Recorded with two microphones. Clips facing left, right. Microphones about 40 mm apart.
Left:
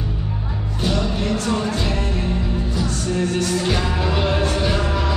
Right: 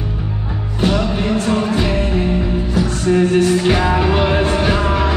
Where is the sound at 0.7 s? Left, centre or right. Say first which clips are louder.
Right 5 dB; right.